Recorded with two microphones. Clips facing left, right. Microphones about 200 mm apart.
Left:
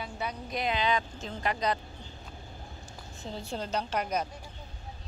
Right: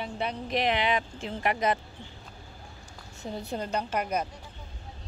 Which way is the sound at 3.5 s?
10° right (ahead or behind).